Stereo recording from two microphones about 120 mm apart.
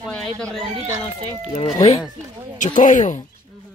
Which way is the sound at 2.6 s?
90° left.